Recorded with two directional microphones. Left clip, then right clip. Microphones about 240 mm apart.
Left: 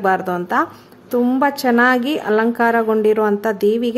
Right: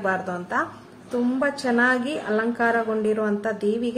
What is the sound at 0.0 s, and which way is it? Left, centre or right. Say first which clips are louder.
A woman's voice: left 8 dB; left.